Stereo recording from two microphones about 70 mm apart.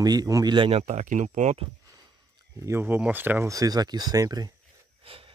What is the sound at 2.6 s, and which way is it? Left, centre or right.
Speech, right.